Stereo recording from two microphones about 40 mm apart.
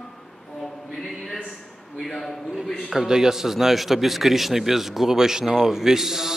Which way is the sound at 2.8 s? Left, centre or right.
Centre.